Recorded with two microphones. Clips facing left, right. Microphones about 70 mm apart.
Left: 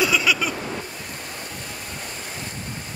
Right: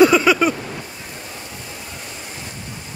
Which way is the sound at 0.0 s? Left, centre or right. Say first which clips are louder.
Right 9 dB; right.